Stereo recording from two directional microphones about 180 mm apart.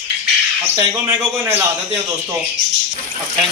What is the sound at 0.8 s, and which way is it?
Speech, 15° right (ahead or behind).